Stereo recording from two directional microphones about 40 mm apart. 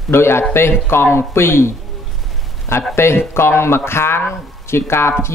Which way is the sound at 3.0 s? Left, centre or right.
Left.